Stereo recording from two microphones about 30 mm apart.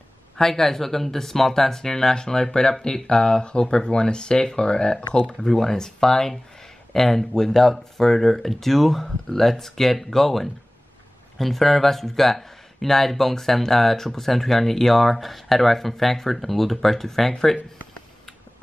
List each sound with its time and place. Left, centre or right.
0.4 s speech: centre; by 4.9 s left
5.4 s speech: centre